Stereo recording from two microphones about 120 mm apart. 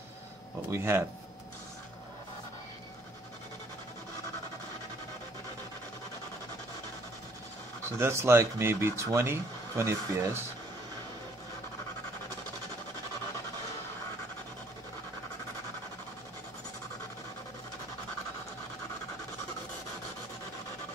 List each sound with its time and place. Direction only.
0.7 s speech: 20° right (ahead or behind)
8.0 s speech: 20° right (ahead or behind)